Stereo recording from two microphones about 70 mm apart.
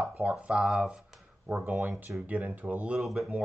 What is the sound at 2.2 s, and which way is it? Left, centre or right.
Speech, right.